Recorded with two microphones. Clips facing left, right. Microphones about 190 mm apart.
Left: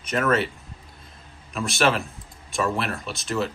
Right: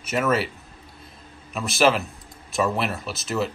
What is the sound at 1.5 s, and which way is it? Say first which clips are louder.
Speech: right 2 dB; centre (ahead or behind).